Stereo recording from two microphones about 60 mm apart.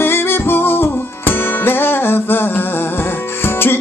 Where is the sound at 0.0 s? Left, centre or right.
Left.